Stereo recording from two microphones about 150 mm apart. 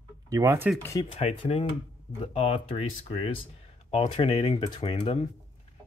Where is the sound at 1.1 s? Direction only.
40° left (ahead or behind).